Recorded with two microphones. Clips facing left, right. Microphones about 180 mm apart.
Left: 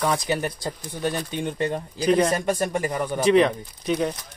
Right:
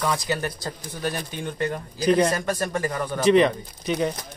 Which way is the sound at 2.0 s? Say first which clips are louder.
Even; centre (ahead or behind).